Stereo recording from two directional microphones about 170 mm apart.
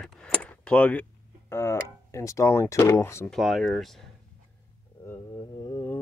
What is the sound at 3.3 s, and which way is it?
Speech, centre (ahead or behind).